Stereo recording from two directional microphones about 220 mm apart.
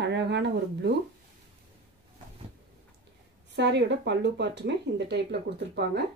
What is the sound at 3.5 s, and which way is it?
Speech, 50° right (ahead or behind).